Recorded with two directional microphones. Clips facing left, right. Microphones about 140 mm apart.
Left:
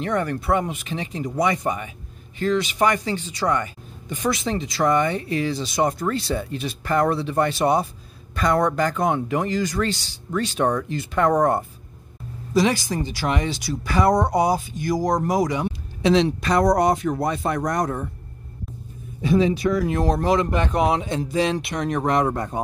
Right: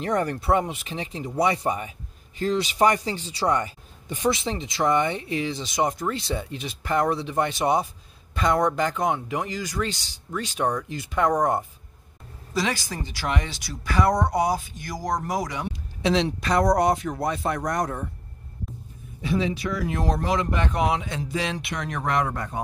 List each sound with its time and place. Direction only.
0.0 s speech: 35° right (ahead or behind); by 11.3 s 10° right (ahead or behind)
12.5 s speech: 20° left (ahead or behind)
13.1 s speech: 30° left (ahead or behind)
16.1 s speech: 45° left (ahead or behind)
19.2 s speech: 45° left (ahead or behind)